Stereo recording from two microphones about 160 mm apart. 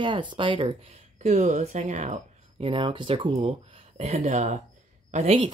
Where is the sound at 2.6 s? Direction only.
35° right (ahead or behind).